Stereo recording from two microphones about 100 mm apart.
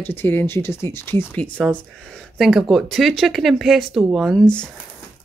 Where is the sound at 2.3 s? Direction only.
Centre (ahead or behind).